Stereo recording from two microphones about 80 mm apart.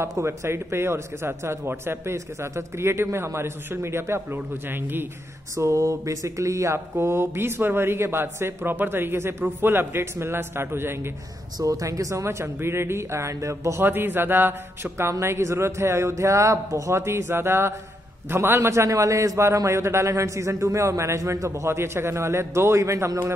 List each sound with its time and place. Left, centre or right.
0.0 s a man's voice: right
5.6 s a man's voice: right
11.6 s a man's voice: right
13.8 s a man's voice: right